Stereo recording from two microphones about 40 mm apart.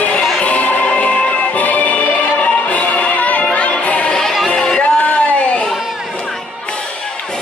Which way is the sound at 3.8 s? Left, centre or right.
Left.